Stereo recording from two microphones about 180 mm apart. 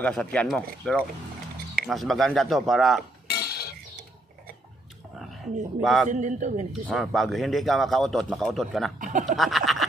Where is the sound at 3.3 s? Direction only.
60° left (ahead or behind).